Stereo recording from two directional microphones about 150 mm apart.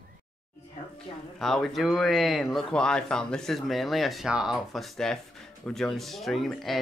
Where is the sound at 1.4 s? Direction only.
5° left (ahead or behind).